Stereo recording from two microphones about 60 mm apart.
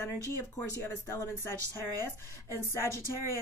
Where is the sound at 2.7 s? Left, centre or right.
Left.